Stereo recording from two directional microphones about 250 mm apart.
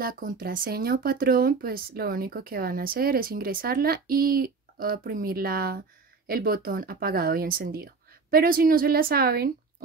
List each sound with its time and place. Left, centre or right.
0.0 s speech: right